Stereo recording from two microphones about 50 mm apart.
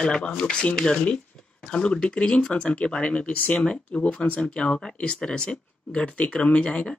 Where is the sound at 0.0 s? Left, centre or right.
Centre.